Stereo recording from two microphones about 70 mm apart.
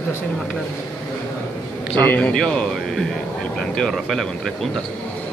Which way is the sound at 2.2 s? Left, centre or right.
Centre.